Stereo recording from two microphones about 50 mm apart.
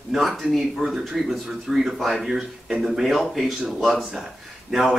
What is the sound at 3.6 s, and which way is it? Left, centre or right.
Speech, centre.